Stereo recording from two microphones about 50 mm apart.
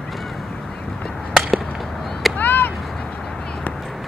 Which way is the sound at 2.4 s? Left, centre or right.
Left.